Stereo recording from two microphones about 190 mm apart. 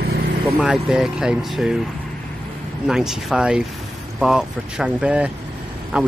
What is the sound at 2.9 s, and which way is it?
Speech, 5° right (ahead or behind).